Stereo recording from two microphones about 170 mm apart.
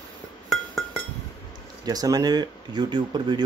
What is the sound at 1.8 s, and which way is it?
Speech, 20° right (ahead or behind).